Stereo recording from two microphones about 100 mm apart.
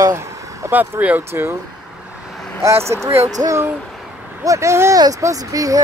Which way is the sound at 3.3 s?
35° right (ahead or behind).